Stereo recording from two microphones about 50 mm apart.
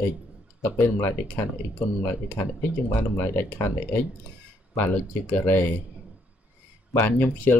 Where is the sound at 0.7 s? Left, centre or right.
Left.